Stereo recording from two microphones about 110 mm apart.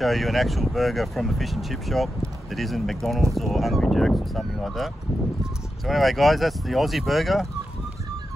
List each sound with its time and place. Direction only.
0.0 s speech: centre (ahead or behind)